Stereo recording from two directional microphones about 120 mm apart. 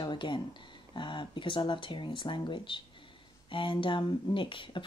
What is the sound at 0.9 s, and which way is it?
Speech, 40° left (ahead or behind).